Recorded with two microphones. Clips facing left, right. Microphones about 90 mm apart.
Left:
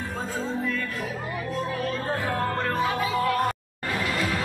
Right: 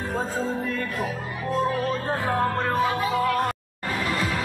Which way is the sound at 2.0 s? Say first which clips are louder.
Right 2 dB; 20° right (ahead or behind).